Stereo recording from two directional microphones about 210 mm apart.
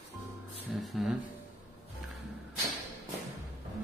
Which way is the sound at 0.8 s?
Centre (ahead or behind).